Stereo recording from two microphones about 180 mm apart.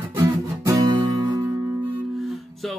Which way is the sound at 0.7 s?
25° right (ahead or behind).